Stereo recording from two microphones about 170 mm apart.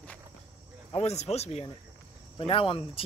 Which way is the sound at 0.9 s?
40° left (ahead or behind).